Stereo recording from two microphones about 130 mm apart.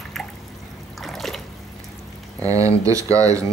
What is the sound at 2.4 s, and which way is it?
Speech, 25° right (ahead or behind).